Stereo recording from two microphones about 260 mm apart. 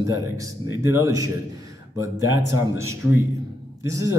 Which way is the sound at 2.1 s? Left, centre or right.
Right.